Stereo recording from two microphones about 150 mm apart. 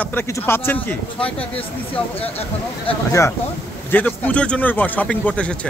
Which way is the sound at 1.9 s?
40° left (ahead or behind).